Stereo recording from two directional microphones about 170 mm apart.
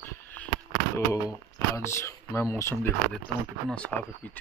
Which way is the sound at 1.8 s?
15° left (ahead or behind).